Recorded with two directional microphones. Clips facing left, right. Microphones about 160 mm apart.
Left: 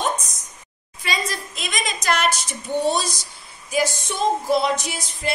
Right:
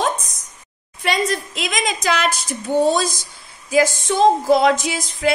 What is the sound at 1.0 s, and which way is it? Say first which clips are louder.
A woman's voice: right 7 dB; 65° right (ahead or behind).